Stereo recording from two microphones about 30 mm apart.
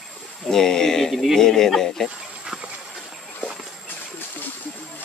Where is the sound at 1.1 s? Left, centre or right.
Centre.